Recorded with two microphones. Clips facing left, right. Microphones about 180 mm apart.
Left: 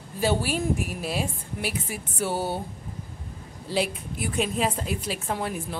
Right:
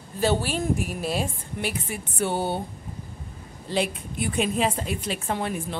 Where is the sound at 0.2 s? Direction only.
10° left (ahead or behind).